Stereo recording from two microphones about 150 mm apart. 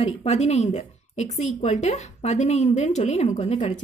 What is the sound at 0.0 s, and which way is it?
A woman's voice, 45° left (ahead or behind).